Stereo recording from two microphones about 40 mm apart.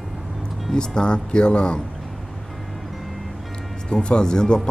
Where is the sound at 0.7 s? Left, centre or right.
Left.